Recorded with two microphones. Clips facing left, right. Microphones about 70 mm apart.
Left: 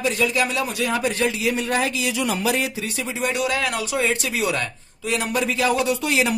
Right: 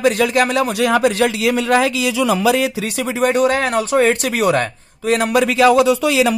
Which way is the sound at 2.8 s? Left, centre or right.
Right.